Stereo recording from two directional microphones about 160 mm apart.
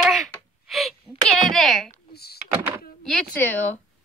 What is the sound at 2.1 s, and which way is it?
Door, 80° left.